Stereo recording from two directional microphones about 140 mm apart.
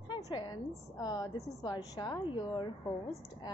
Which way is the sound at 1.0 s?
30° left (ahead or behind).